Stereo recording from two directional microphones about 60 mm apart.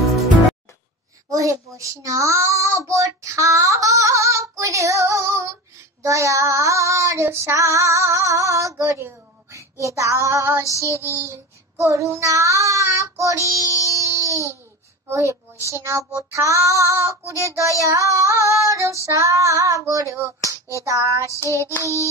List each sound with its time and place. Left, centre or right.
1.3 s a child's voice: right
6.0 s child singing: right
13.8 s a sound: right
15.0 s a woman's voice: right
15.7 s child singing: right